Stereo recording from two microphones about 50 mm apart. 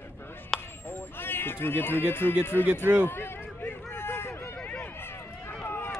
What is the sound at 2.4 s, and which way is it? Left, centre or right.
Speech, left.